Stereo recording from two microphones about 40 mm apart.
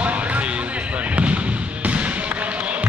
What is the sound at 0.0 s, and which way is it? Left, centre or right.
Basketball bounce, right.